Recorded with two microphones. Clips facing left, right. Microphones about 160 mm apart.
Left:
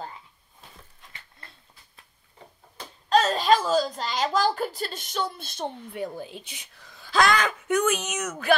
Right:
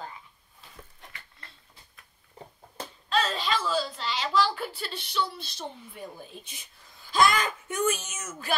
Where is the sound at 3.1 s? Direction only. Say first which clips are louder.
Left 8 dB; 40° left (ahead or behind).